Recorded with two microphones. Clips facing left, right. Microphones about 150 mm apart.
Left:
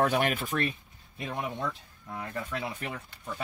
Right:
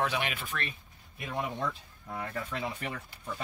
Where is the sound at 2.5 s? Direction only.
5° left (ahead or behind).